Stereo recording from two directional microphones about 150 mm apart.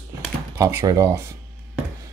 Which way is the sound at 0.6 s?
20° right (ahead or behind).